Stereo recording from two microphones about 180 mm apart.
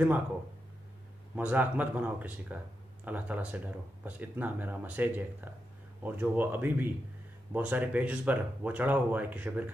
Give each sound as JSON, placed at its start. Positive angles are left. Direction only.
{"t": 1.3, "sound": "speech", "side_deg": -10}